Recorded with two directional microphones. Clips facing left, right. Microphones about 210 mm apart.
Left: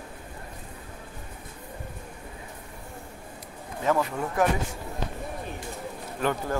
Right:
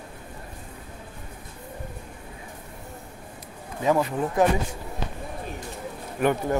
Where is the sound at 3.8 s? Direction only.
20° right (ahead or behind).